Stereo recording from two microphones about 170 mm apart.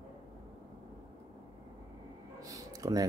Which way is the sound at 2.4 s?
20° right (ahead or behind).